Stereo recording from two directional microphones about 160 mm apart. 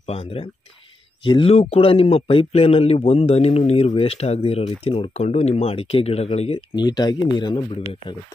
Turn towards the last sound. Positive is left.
turn(degrees=35)  # may be behind; listen again after turning